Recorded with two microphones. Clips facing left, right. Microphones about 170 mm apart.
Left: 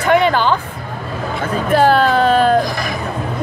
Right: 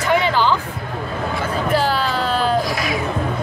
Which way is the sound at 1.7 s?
55° left (ahead or behind).